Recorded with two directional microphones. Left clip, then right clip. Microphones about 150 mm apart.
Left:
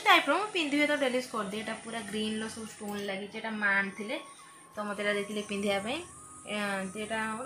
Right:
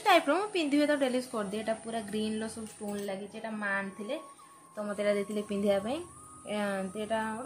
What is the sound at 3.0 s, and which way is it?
Speech, 45° right (ahead or behind).